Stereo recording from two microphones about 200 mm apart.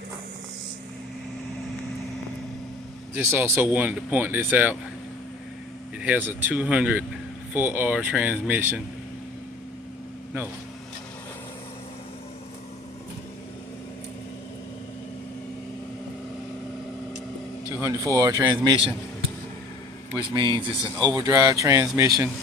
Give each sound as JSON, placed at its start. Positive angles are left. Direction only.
{"t": 3.3, "sound": "speech", "side_deg": -10}
{"t": 5.9, "sound": "speech", "side_deg": -10}
{"t": 17.7, "sound": "speech", "side_deg": -15}
{"t": 20.2, "sound": "a man's voice", "side_deg": -25}